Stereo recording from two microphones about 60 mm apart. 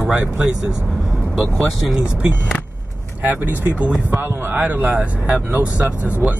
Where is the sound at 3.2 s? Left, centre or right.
Right.